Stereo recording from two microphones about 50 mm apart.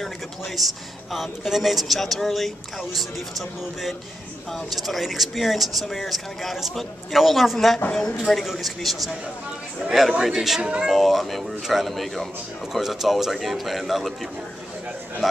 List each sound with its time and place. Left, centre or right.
0.6 s speech: centre
10.6 s speech: right
10.9 s speech: centre